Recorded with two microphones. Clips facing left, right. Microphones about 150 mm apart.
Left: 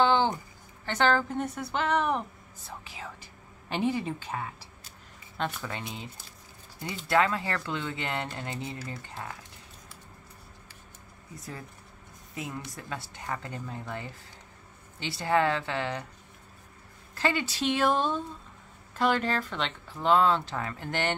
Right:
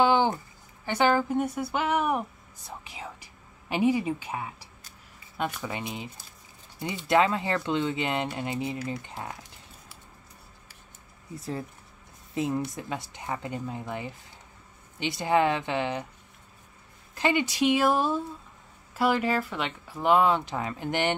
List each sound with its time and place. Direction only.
0.0 s a sound: 10° right (ahead or behind)
0.8 s a woman's voice: 15° right (ahead or behind)
7.1 s speech: 20° right (ahead or behind)
12.4 s speech: 30° right (ahead or behind)
12.9 s speech: 15° right (ahead or behind)
17.1 s speech: 15° right (ahead or behind)